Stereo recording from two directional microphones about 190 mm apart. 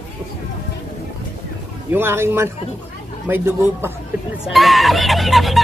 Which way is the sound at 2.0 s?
15° right (ahead or behind).